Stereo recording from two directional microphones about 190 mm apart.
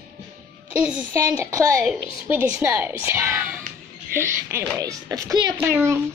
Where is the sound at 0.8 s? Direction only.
5° right (ahead or behind); by 5.6 s 25° right (ahead or behind).